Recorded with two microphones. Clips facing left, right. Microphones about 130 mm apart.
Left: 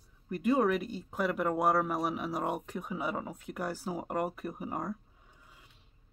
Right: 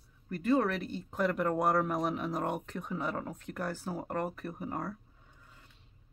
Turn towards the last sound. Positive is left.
turn(degrees=10)  # may be behind; listen again after turning